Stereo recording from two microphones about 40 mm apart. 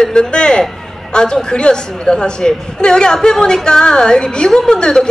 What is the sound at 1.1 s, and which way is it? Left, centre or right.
A woman's voice, left.